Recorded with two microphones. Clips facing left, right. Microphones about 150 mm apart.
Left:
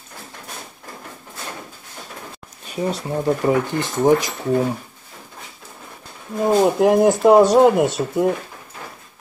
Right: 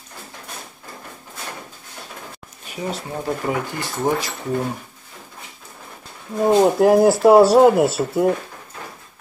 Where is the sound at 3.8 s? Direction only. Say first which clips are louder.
Left 6 dB; 20° left (ahead or behind).